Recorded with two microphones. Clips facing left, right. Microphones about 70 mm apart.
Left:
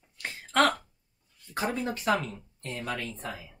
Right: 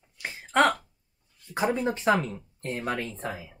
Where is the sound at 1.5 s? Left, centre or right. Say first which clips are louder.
Right 4 dB; centre.